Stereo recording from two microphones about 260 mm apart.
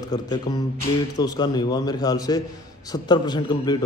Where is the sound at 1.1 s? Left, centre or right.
Centre.